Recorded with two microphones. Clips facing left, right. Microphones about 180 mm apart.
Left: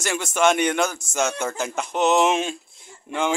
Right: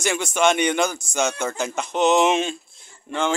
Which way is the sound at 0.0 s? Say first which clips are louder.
Even; 5° left (ahead or behind).